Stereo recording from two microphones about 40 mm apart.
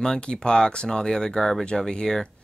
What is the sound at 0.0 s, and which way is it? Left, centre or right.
Speech, centre.